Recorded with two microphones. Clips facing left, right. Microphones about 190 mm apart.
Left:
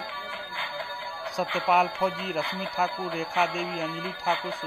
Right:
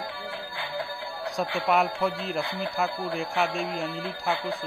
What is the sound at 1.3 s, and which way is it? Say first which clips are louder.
Speech: even; centre (ahead or behind).